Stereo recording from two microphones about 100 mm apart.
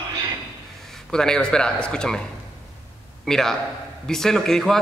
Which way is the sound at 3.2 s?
5° left (ahead or behind).